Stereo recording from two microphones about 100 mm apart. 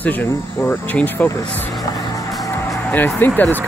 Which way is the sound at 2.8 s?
15° left (ahead or behind).